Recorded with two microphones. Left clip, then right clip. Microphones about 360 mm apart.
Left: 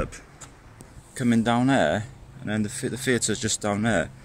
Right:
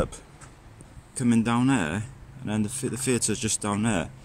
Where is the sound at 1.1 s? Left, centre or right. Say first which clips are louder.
Left 2 dB; centre.